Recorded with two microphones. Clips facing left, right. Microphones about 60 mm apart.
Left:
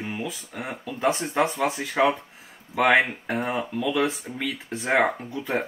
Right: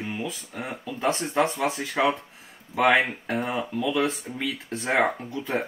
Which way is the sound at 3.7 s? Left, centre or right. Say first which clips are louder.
Even; centre.